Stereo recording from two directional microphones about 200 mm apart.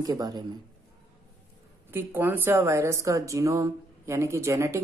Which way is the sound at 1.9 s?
10° right (ahead or behind).